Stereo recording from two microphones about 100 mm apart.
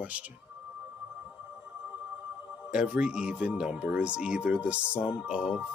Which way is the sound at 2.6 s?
10° right (ahead or behind).